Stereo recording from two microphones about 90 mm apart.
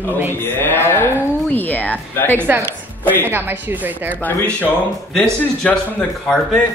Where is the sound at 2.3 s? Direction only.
25° right (ahead or behind).